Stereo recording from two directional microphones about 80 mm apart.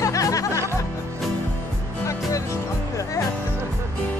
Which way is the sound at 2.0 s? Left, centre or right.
Left.